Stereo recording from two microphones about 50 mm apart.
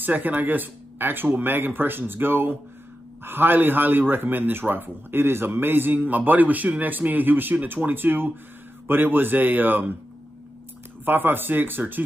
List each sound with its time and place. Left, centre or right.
0.0 s speech: right
11.1 s speech: right